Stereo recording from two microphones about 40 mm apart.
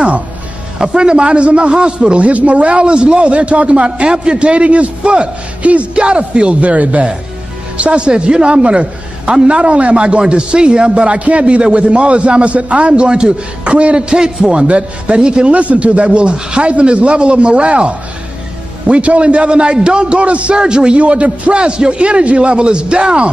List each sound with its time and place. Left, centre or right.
0.8 s a man's voice: right
15.5 s a man's voice: right
21.0 s a man's voice: right